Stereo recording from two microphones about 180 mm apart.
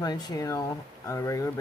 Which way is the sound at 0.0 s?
25° left (ahead or behind).